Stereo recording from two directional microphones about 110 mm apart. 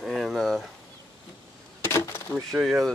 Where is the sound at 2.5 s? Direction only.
15° right (ahead or behind).